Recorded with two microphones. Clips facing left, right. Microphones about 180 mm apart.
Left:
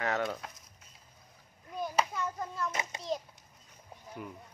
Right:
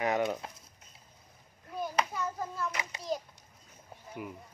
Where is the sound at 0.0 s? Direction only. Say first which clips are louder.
Right 3 dB; 15° right (ahead or behind).